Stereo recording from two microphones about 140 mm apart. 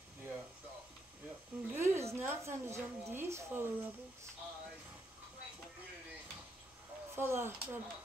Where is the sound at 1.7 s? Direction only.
20° right (ahead or behind).